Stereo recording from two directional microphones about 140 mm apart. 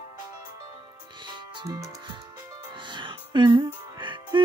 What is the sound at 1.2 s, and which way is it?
Music, 30° right (ahead or behind).